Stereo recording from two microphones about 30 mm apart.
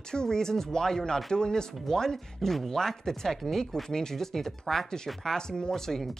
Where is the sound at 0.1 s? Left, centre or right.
Left.